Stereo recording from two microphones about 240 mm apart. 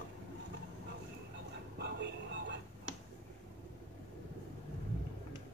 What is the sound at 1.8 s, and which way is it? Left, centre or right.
Train, right.